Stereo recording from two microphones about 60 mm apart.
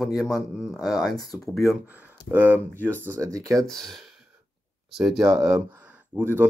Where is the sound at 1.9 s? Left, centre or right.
Right.